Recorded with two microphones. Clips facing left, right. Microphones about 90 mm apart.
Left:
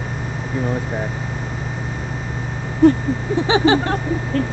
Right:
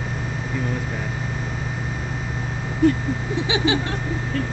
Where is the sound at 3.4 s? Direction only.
40° left (ahead or behind).